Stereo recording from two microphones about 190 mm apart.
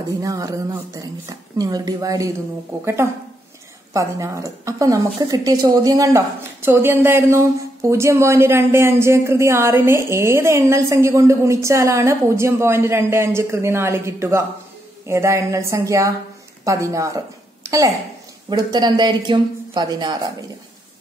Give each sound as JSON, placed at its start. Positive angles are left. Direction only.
{"t": 0.2, "sound": "a woman's voice", "side_deg": -15}